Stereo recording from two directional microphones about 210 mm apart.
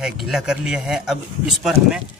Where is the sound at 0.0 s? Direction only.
Centre (ahead or behind).